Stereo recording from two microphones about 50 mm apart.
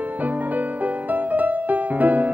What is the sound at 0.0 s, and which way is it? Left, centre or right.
Music, right.